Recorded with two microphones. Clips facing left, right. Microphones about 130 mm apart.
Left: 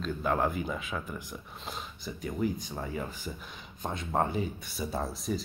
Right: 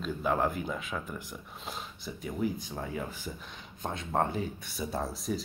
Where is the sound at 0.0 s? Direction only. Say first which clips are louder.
Even; centre (ahead or behind).